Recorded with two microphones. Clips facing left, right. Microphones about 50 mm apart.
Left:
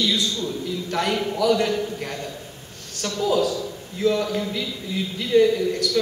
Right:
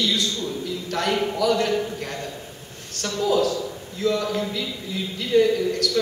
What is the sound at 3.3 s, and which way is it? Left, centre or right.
Speech, centre.